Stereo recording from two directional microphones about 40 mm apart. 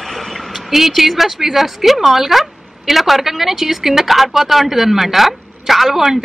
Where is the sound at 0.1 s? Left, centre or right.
Centre.